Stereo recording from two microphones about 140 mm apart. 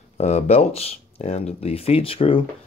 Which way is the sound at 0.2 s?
55° left (ahead or behind).